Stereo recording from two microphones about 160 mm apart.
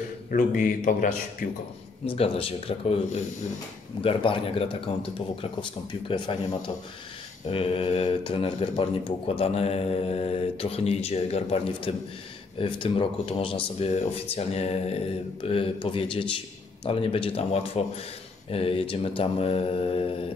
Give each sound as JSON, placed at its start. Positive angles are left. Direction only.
{"t": 0.3, "sound": "a man's voice", "side_deg": 60}
{"t": 2.0, "sound": "speech", "side_deg": 35}
{"t": 7.4, "sound": "speech", "side_deg": 35}